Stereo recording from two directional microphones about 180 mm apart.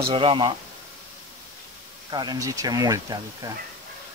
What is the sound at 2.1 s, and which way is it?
Speech, 25° right (ahead or behind).